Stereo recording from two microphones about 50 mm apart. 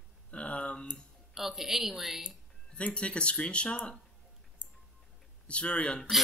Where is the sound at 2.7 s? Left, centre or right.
Left.